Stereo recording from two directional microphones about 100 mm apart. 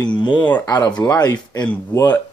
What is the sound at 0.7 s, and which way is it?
Speech, 40° left (ahead or behind).